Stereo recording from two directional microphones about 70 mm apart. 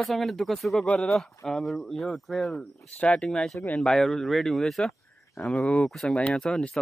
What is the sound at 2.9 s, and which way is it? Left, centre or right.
Speech, centre.